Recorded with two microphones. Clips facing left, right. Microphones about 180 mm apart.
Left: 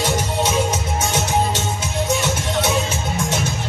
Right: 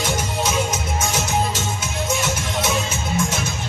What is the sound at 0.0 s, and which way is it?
Music, 35° left (ahead or behind).